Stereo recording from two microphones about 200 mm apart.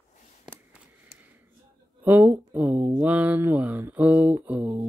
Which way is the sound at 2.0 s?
10° right (ahead or behind).